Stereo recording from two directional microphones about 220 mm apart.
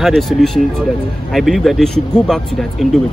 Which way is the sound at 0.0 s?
Centre (ahead or behind).